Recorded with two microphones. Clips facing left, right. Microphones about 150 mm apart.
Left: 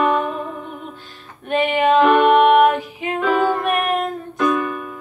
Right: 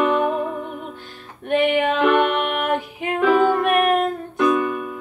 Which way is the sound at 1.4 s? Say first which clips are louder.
Left 1 dB; 55° right (ahead or behind).